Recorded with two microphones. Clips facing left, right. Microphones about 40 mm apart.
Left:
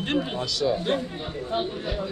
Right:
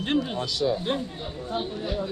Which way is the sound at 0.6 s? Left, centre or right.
Left.